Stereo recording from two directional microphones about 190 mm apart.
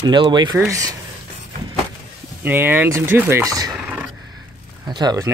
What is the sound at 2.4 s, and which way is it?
Speech, 10° right (ahead or behind).